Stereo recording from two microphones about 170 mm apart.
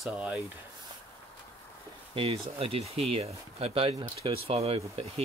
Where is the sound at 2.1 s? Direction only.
35° right (ahead or behind).